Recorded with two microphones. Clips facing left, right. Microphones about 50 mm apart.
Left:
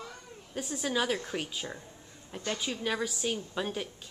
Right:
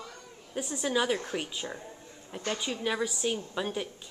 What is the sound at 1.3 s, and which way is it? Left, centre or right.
A woman's voice, centre.